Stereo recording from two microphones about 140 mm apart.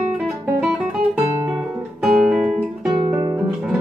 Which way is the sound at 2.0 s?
5° right (ahead or behind).